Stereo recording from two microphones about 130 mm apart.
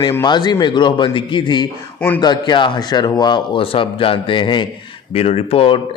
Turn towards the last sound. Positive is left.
turn(degrees=45)  # may be behind; listen again after turning